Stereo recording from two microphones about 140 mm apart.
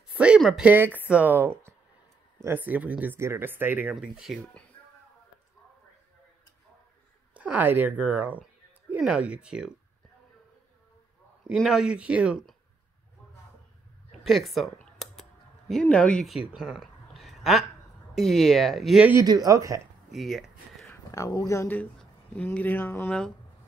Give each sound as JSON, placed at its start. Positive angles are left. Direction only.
{"t": 0.1, "sound": "speech", "side_deg": -5}
{"t": 7.3, "sound": "speech", "side_deg": -10}
{"t": 11.5, "sound": "speech", "side_deg": 0}
{"t": 14.2, "sound": "speech", "side_deg": 0}
{"t": 15.7, "sound": "speech", "side_deg": 10}
{"t": 19.2, "sound": "speech", "side_deg": -25}
{"t": 20.1, "sound": "a sound", "side_deg": 0}
{"t": 21.1, "sound": "speech", "side_deg": 25}